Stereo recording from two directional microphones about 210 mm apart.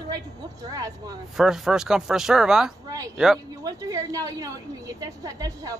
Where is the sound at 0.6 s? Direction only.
15° right (ahead or behind).